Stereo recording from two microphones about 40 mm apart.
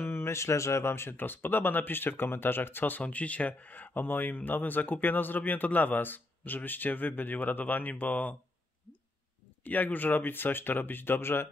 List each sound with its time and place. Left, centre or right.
0.0 s a sound: left
0.8 s speech: left
3.0 s speech: left
7.9 s speech: left
9.7 s speech: left